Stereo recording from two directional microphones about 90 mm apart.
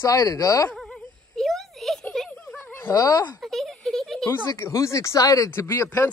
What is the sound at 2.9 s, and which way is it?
Speech, 40° left (ahead or behind).